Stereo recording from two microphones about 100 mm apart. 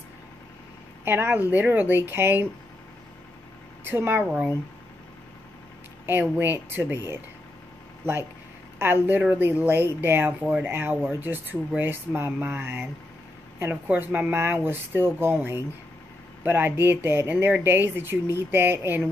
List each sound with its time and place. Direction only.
1.0 s speech: 20° right (ahead or behind)
3.8 s speech: 20° right (ahead or behind)
4.2 s speech: 10° right (ahead or behind)
6.3 s speech: 20° right (ahead or behind)